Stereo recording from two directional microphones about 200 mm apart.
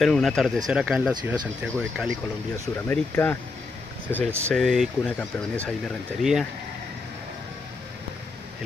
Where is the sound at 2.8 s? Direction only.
10° left (ahead or behind).